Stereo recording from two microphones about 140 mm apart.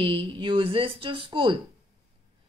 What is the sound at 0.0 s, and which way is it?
A woman's voice, 40° right (ahead or behind).